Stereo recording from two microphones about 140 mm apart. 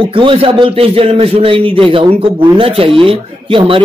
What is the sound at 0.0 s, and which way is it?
A man's voice, 40° right (ahead or behind).